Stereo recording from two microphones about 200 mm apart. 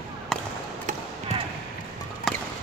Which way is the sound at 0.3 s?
Centre (ahead or behind).